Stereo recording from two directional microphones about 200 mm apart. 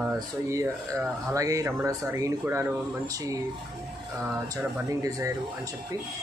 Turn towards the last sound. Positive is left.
turn(degrees=-15)  # may be behind; listen again after turning